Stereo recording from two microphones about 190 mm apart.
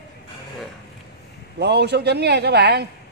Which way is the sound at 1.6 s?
60° right (ahead or behind).